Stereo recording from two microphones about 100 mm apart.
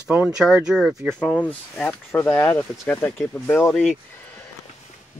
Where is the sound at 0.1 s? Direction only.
10° right (ahead or behind).